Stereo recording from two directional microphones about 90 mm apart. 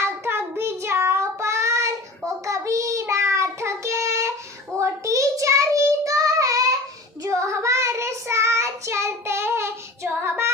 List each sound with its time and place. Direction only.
0.0 s child singing: 30° right (ahead or behind)